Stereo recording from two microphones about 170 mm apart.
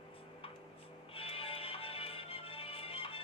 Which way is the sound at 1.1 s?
35° left (ahead or behind).